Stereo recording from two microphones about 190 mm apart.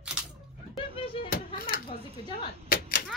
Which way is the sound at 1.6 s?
50° left (ahead or behind).